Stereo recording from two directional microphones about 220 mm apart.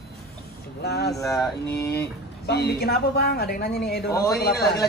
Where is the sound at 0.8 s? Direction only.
45° left (ahead or behind).